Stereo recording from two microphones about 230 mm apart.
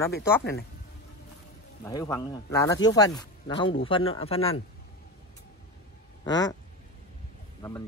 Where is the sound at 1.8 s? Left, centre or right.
Centre.